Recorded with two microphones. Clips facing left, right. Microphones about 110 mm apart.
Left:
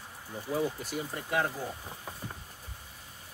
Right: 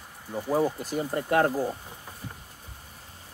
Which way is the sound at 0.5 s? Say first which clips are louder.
Right 6 dB; 45° right (ahead or behind).